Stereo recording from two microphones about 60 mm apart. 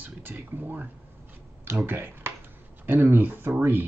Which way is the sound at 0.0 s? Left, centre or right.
Right.